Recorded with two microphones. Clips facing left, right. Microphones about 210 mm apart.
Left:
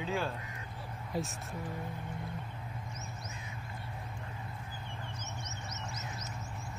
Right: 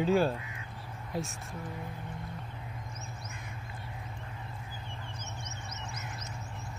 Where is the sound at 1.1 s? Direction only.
Centre (ahead or behind).